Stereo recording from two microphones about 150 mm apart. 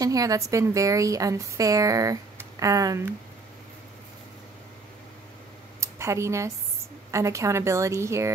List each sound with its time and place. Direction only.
0.0 s a woman's voice: 25° right (ahead or behind)
5.8 s a sound: 20° right (ahead or behind)
7.1 s a woman's voice: 20° right (ahead or behind)